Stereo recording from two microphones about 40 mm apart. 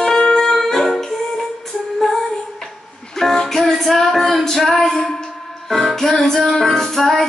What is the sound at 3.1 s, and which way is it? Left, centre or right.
Music, centre.